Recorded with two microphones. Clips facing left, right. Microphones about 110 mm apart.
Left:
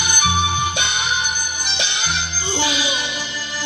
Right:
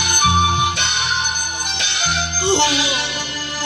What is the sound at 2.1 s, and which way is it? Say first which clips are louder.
Music: right 11 dB; 75° right (ahead or behind).